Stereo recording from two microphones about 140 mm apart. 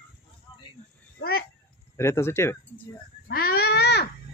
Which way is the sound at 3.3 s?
90° left.